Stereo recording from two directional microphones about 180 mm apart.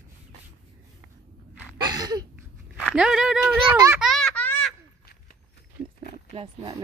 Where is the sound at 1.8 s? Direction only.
20° right (ahead or behind).